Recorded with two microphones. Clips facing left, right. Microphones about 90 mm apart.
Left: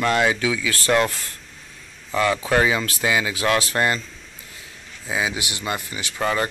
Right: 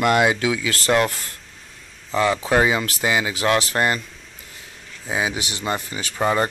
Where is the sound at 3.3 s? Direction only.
20° right (ahead or behind).